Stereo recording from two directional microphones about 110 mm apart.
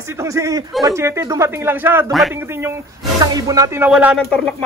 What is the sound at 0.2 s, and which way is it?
A man's voice, 30° right (ahead or behind).